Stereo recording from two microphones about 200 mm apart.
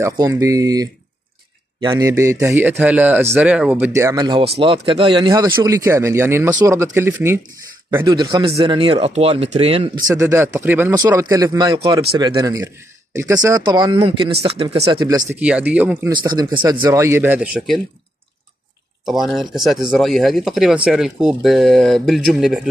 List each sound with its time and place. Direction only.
0.0 s speech: 15° right (ahead or behind)
10.0 s speech: 15° right (ahead or behind)
15.3 s speech: 5° right (ahead or behind)
16.1 s speech: 20° right (ahead or behind); by 17.8 s centre (ahead or behind)
19.0 s speech: centre (ahead or behind)